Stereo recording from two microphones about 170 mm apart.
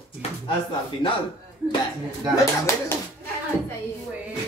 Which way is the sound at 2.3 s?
15° left (ahead or behind).